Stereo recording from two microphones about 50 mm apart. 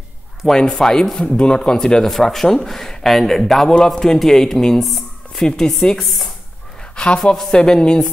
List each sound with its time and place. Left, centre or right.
0.6 s a woman's voice: centre